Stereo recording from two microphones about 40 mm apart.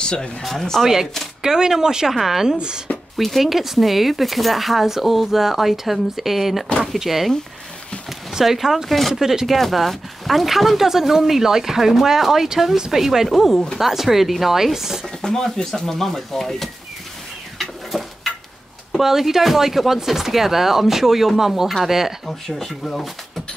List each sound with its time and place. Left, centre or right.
0.0 s speech: left
0.4 s speech: centre
1.4 s speech: centre
2.1 s speech: centre
2.5 s speech: right
3.2 s speech: centre
8.3 s speech: centre
8.8 s speech: centre
9.2 s speech: centre
9.5 s speech: centre
15.2 s speech: centre
17.6 s bird: centre
18.9 s speech: centre
22.5 s speech: centre